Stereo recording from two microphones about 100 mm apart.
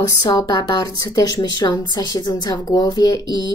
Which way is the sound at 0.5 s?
40° left (ahead or behind).